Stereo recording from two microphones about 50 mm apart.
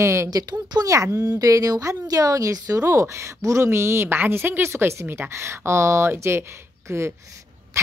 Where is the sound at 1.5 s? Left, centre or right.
Right.